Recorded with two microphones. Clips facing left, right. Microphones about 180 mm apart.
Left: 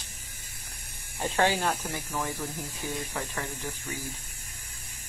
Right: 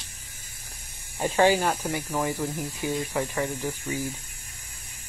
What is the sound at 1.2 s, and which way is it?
Speech, 10° right (ahead or behind).